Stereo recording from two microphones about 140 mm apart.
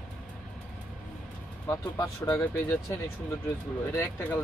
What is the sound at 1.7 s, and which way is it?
Speech, 25° left (ahead or behind).